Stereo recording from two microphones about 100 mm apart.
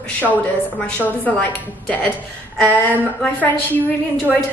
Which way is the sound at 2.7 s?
15° left (ahead or behind).